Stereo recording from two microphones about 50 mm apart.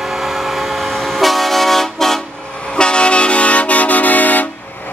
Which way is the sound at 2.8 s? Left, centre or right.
Centre.